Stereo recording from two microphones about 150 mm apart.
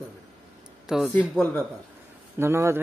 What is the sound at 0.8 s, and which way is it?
Speech, 5° right (ahead or behind).